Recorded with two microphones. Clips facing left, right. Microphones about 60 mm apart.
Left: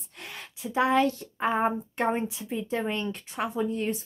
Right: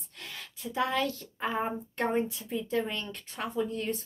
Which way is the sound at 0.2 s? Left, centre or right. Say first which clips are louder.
Left 2 dB; left.